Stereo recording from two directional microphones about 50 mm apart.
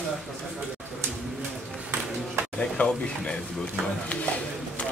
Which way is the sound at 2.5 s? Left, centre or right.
Left.